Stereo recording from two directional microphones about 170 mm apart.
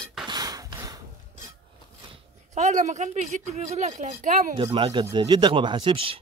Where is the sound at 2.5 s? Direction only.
45° right (ahead or behind).